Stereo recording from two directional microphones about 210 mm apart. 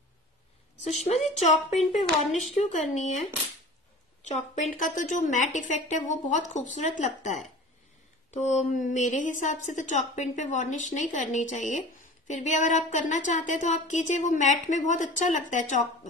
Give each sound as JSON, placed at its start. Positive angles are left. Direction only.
{"t": 0.8, "sound": "speech", "side_deg": 30}
{"t": 4.3, "sound": "speech", "side_deg": 35}